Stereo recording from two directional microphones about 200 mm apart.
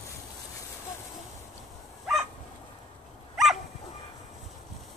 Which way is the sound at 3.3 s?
Centre (ahead or behind).